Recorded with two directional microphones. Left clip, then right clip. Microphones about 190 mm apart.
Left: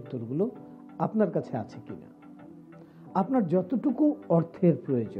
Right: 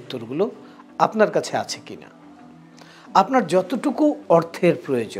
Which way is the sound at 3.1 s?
10° right (ahead or behind).